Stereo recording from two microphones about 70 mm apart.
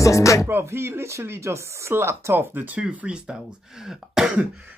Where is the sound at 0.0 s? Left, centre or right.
Left.